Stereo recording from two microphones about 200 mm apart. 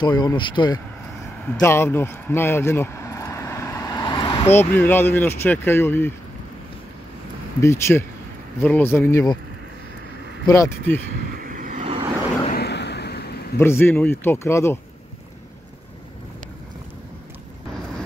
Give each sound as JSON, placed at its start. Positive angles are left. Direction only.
{"t": 0.0, "sound": "speech", "side_deg": 20}
{"t": 7.6, "sound": "speech", "side_deg": 15}
{"t": 10.4, "sound": "speech", "side_deg": 15}
{"t": 11.3, "sound": "vehicle", "side_deg": -45}
{"t": 12.5, "sound": "a sound", "side_deg": 55}
{"t": 13.6, "sound": "speech", "side_deg": 10}